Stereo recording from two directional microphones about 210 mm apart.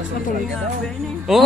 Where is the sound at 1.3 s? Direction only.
Centre (ahead or behind).